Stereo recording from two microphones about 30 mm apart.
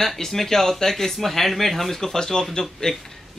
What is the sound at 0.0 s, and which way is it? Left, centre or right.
Speech, centre.